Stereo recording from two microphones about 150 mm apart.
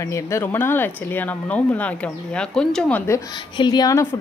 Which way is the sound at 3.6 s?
25° left (ahead or behind).